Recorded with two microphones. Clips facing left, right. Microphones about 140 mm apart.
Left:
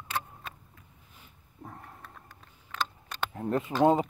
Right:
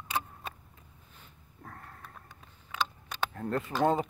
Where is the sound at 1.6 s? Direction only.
15° left (ahead or behind).